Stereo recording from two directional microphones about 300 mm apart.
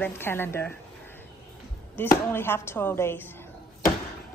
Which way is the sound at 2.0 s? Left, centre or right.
Centre.